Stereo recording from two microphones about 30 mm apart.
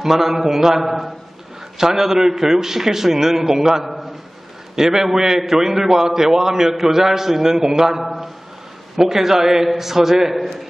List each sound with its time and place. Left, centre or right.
0.0 s a man's voice: centre